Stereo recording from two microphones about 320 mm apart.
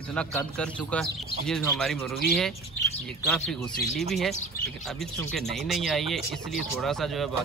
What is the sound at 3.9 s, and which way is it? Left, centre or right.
Speech, centre.